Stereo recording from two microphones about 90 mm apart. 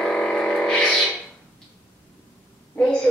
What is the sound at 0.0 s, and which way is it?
Music, 10° left (ahead or behind).